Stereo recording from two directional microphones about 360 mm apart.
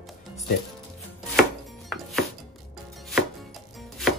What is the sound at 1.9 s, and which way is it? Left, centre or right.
Chopping, centre.